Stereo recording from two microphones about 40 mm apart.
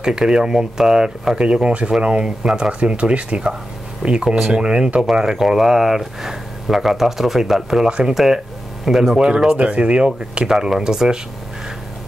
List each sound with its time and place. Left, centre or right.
0.0 s speech: centre
5.2 s speech: centre; by 10.4 s right
10.4 s speech: centre